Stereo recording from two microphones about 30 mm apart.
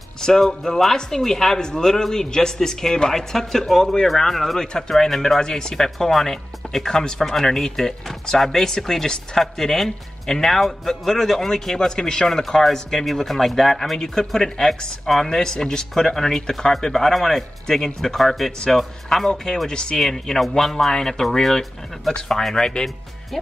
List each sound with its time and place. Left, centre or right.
0.2 s speech: centre
1.6 s a man's voice: left; by 4.6 s centre
4.6 s a man's voice: centre
5.4 s speech: left; by 13.9 s centre
13.9 s a man's voice: left
16.8 s speech: centre
18.1 s speech: centre
18.7 s speech: left
19.0 s speech: centre
19.7 s a man's voice: left
20.5 s speech: centre